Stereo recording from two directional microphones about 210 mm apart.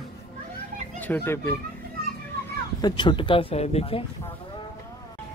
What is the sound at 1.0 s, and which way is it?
Speech, 10° left (ahead or behind).